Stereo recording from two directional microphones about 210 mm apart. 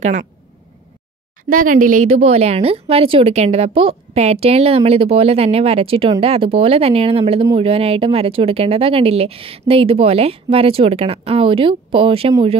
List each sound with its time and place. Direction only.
0.0 s speech: 35° right (ahead or behind)
1.5 s speech: 40° right (ahead or behind)